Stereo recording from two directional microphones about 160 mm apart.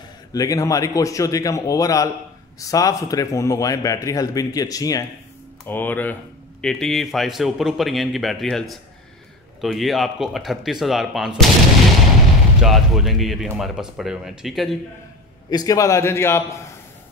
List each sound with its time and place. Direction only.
0.3 s a man's voice: 20° left (ahead or behind)
5.7 s a man's voice: 10° left (ahead or behind)
12.6 s speech: centre (ahead or behind)
15.5 s a man's voice: 20° left (ahead or behind)